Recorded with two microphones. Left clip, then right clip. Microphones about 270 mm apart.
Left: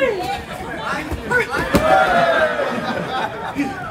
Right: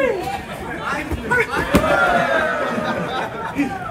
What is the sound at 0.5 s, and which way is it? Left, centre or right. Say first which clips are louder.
Chatter: even; centre.